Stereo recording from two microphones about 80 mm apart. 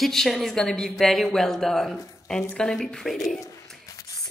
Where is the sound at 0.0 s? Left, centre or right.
Centre.